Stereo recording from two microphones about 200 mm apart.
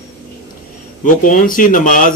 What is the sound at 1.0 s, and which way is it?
Speech, 40° left (ahead or behind).